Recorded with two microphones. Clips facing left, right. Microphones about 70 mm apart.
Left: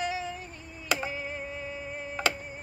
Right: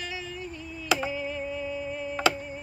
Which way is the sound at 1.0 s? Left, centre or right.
Left.